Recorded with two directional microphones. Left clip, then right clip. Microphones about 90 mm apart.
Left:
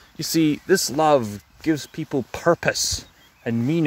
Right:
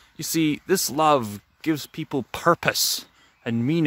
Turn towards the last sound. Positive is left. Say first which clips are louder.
# left 1 dB
turn(degrees=-90)